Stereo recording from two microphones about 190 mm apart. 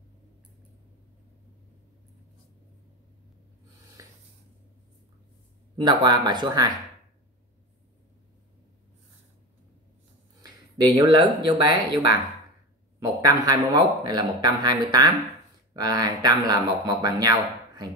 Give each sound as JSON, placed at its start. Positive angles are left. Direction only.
{"t": 4.0, "sound": "a sound", "side_deg": -15}
{"t": 5.8, "sound": "speech", "side_deg": -20}
{"t": 10.4, "sound": "speech", "side_deg": -20}